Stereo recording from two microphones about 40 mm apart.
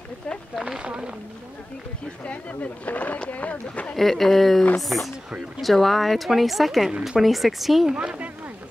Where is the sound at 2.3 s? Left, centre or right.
Left.